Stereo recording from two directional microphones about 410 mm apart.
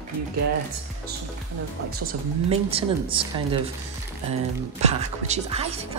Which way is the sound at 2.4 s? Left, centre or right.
Centre.